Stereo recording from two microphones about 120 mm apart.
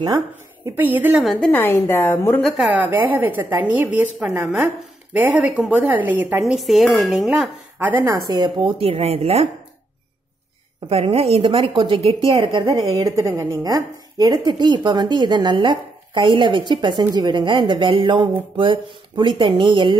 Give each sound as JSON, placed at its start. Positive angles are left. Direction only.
{"t": 0.7, "sound": "a woman's voice", "side_deg": -15}
{"t": 1.2, "sound": "dishes", "side_deg": 5}
{"t": 1.5, "sound": "a woman's voice", "side_deg": 15}
{"t": 2.4, "sound": "dishes", "side_deg": 0}
{"t": 2.7, "sound": "a woman's voice", "side_deg": -15}
{"t": 6.4, "sound": "dishes", "side_deg": 0}
{"t": 7.8, "sound": "speech", "side_deg": -20}
{"t": 10.9, "sound": "speech", "side_deg": -55}
{"t": 12.7, "sound": "a woman's voice", "side_deg": -30}